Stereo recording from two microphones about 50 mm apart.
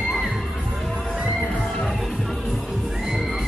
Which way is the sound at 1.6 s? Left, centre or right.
Centre.